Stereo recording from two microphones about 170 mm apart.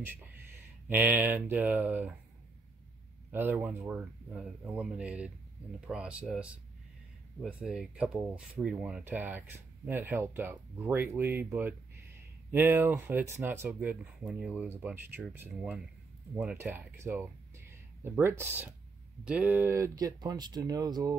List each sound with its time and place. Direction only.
0.0 s speech: 10° right (ahead or behind)
3.3 s speech: 10° right (ahead or behind)